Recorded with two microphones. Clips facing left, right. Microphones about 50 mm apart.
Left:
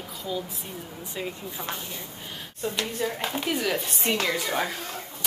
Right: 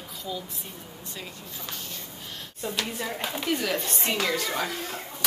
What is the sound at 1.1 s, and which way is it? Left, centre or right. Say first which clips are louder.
Speech: left 8 dB; left.